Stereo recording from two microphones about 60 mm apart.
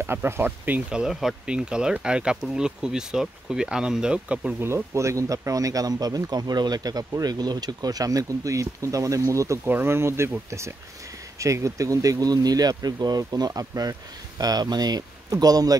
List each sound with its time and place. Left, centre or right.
0.0 s speech: right
1.0 s speech: centre
4.6 s speech: right
9.7 s speech: right
11.3 s speech: right